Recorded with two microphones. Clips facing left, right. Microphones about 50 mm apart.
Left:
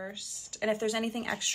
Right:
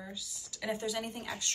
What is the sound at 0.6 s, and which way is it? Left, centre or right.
Speech, left.